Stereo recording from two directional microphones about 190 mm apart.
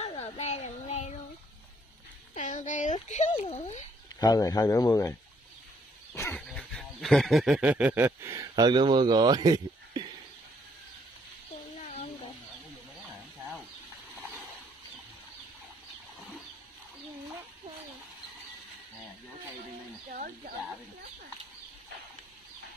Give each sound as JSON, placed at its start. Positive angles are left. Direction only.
{"t": 0.0, "sound": "child singing", "side_deg": 35}
{"t": 2.3, "sound": "a sound", "side_deg": 40}
{"t": 3.3, "sound": "speech", "side_deg": 35}
{"t": 4.2, "sound": "speech", "side_deg": 20}
{"t": 6.1, "sound": "a sound", "side_deg": 10}
{"t": 11.8, "sound": "chicken", "side_deg": 40}
{"t": 20.1, "sound": "fowl", "side_deg": -45}